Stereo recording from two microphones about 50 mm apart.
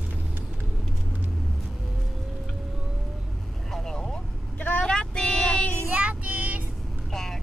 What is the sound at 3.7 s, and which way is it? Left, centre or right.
Vehicle, centre.